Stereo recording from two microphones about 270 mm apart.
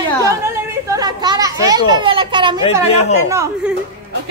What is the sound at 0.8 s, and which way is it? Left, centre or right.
A child's voice, centre.